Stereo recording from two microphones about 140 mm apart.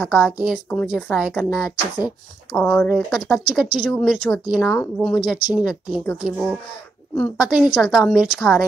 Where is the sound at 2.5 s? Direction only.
5° left (ahead or behind).